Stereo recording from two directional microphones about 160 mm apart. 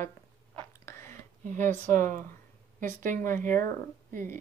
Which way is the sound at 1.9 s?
55° right (ahead or behind).